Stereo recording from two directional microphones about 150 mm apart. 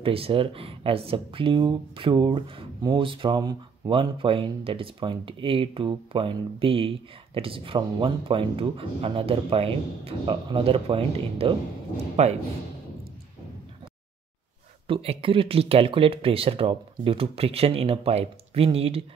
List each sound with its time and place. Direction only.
0.0 s a man's voice: 40° right (ahead or behind)
14.9 s speech: 40° right (ahead or behind)